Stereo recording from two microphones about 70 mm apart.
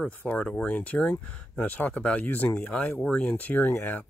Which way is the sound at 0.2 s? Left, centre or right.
Centre.